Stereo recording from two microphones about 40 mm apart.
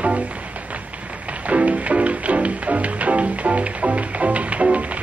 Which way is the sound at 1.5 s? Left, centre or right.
Right.